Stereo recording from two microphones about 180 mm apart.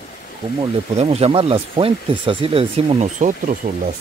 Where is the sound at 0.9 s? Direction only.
35° right (ahead or behind).